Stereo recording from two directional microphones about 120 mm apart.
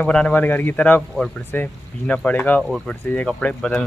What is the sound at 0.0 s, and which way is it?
A man's voice, 10° left (ahead or behind).